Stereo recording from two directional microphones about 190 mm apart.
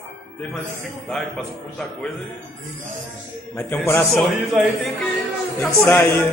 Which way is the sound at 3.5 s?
15° left (ahead or behind).